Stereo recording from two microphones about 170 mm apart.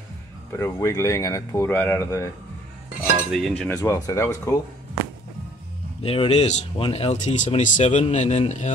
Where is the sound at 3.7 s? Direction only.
15° left (ahead or behind).